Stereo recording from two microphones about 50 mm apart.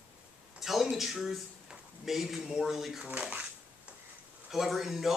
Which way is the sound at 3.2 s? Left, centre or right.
Centre.